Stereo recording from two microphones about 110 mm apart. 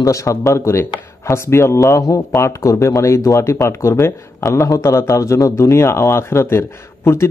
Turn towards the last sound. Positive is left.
turn(degrees=25)  # may be behind; listen again after turning